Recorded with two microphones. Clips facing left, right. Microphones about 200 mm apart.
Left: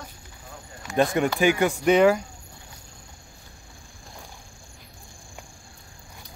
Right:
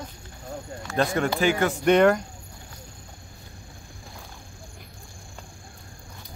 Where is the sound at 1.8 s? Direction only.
5° left (ahead or behind).